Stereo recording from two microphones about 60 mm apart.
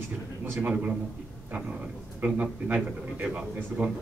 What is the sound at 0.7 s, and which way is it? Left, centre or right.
Speech, right.